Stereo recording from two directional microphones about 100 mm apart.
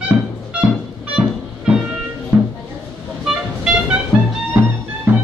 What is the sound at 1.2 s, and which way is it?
Music, 5° right (ahead or behind).